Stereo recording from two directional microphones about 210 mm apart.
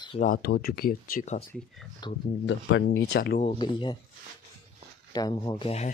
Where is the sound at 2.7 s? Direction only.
60° left (ahead or behind).